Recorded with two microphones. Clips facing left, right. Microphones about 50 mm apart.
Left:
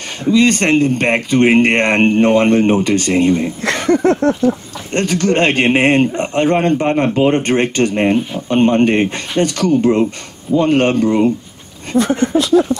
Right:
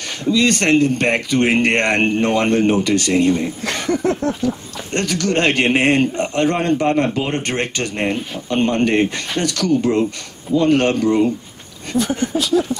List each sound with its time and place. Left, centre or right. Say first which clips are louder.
0.3 s speech: left 3 dB; left
3.9 s a sound: left 6 dB; left
4.9 s speech: left 4 dB; left
11.9 s speech: left 5 dB; left